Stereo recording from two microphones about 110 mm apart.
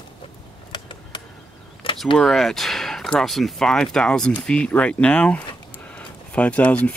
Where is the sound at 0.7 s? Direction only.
45° left (ahead or behind).